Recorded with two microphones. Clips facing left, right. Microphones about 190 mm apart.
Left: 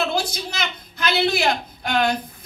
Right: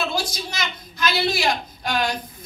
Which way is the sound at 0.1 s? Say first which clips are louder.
Left 2 dB; 60° left (ahead or behind).